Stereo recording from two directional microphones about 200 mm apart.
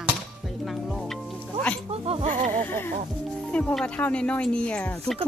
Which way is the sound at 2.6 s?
10° left (ahead or behind).